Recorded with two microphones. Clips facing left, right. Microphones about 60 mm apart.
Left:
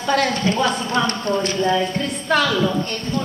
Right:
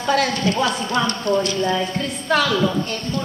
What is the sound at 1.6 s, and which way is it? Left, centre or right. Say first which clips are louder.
A woman's voice: left 2 dB; centre.